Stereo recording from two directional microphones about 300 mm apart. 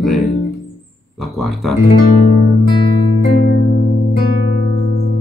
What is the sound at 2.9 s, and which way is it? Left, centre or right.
Music, left.